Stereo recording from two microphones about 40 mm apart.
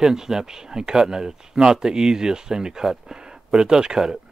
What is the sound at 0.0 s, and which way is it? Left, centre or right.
Speech, centre.